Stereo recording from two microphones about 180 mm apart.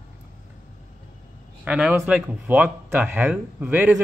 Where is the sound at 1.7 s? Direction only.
5° right (ahead or behind).